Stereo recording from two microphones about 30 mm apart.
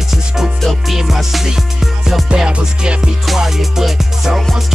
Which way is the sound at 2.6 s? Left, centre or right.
Right.